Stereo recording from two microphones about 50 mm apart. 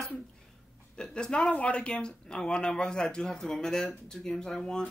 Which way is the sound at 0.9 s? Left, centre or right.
Centre.